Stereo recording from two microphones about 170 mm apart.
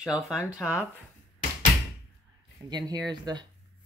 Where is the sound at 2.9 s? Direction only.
25° right (ahead or behind).